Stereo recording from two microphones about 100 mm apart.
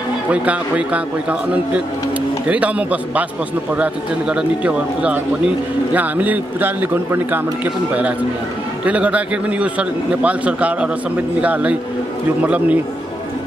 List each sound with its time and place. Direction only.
0.3 s a man's voice: 15° right (ahead or behind)